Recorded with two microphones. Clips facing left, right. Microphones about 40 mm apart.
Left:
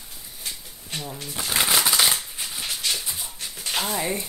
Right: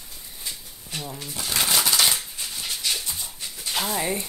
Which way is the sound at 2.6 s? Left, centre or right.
Centre.